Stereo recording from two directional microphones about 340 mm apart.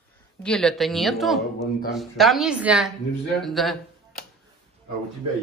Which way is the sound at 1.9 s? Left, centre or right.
Centre.